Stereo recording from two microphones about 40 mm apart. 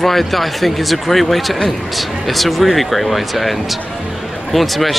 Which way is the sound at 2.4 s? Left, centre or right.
Centre.